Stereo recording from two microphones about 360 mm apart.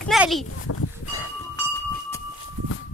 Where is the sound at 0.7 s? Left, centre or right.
Left.